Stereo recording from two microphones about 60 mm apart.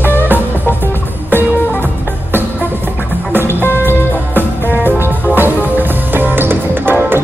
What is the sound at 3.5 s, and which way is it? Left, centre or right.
Music, left.